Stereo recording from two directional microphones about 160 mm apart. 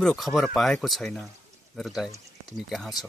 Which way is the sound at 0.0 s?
Centre (ahead or behind).